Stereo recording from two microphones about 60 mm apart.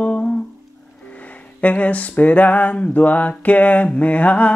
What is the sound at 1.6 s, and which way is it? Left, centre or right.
Mantra, left.